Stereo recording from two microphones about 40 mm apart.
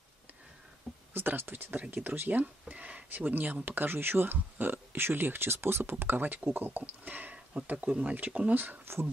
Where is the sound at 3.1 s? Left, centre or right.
Right.